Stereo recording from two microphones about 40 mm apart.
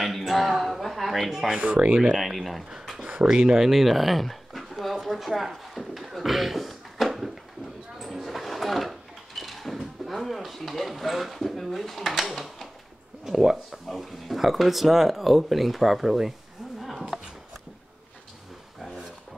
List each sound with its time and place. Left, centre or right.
0.0 s a sound: centre
1.6 s speech: right
2.1 s speech: centre
3.0 s speech: centre
3.5 s speech: centre
5.0 s a sound: centre
12.1 s speech: centre
13.2 s speech: centre
17.1 s a sound: centre